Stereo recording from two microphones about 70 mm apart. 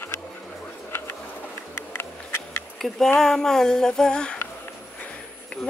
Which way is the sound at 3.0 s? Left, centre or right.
Centre.